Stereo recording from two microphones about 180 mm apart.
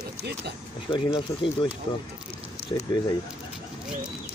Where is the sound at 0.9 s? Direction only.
25° left (ahead or behind).